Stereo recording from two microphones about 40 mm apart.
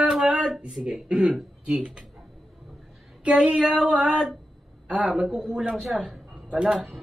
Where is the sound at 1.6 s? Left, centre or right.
Right.